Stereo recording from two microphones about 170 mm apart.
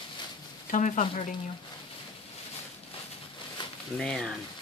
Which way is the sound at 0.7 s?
45° left (ahead or behind).